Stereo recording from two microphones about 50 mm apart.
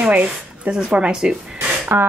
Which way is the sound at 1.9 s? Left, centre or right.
Right.